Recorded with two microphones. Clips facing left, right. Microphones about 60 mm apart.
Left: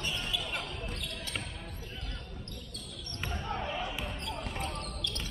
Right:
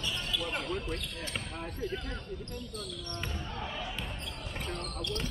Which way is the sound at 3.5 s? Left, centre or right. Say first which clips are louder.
Left 4 dB; left.